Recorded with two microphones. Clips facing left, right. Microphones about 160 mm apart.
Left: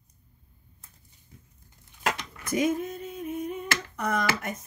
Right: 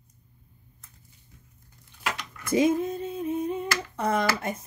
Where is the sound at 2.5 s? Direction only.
25° right (ahead or behind).